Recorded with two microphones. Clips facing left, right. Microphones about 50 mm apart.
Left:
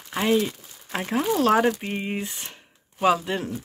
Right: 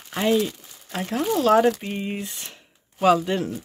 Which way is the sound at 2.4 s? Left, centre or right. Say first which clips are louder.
Left 1 dB; centre.